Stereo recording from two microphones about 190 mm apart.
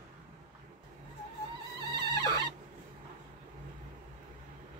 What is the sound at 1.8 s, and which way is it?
Insect, 20° left (ahead or behind).